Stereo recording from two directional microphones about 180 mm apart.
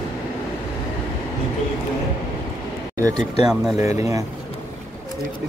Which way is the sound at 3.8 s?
15° right (ahead or behind).